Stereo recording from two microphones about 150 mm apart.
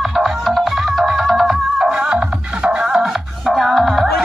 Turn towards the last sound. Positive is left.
turn(degrees=0)  # may be behind; listen again after turning